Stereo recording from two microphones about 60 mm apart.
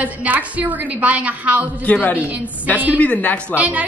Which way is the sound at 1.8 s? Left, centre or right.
Left.